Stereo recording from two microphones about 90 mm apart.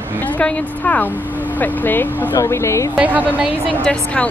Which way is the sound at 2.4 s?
30° left (ahead or behind).